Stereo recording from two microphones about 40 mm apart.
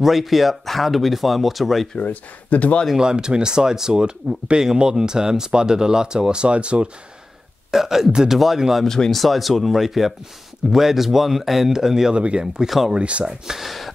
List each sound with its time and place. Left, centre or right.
0.0 s speech: centre
2.0 s speech: left
3.0 s speech: centre
7.7 s speech: centre
8.8 s speech: centre
9.2 s speech: centre
12.2 s speech: right
12.6 s speech: centre
12.9 s speech: right
13.2 s speech: centre
13.7 s a sound: centre